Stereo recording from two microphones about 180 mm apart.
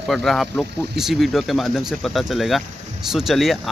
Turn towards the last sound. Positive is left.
turn(degrees=0)  # may be behind; listen again after turning